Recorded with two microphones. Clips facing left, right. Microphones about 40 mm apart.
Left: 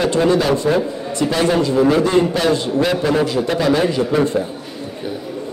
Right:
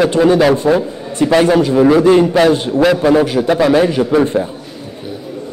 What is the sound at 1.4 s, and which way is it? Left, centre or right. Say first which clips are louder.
Speech: right 4 dB; right.